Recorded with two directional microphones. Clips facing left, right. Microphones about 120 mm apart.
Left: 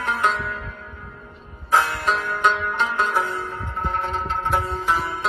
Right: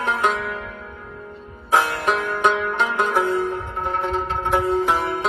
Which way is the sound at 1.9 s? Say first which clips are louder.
Right 2 dB; 20° right (ahead or behind).